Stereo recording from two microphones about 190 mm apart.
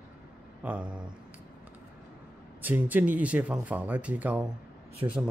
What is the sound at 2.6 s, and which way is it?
Speech, 10° right (ahead or behind).